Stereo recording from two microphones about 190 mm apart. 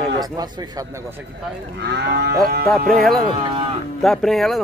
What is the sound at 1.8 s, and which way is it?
Cattle, 60° right (ahead or behind).